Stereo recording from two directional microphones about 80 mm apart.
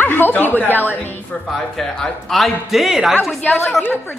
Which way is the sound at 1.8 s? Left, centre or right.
Centre.